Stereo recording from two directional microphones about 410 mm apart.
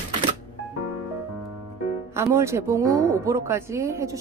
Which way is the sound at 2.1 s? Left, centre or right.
Centre.